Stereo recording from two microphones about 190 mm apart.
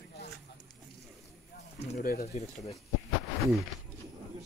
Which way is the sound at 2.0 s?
50° left (ahead or behind).